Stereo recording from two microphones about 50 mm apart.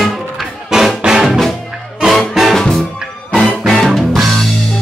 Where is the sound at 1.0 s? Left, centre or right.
Centre.